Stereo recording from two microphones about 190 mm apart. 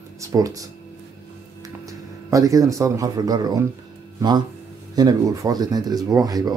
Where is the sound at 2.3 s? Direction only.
20° right (ahead or behind).